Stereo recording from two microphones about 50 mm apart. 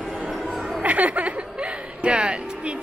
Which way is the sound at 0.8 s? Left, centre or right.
Right.